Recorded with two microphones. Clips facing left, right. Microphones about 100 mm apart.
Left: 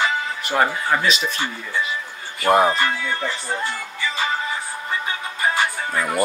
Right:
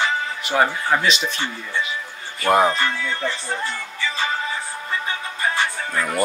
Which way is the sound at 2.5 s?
Centre (ahead or behind).